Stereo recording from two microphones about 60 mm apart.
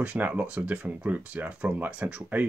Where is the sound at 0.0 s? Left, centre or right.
Right.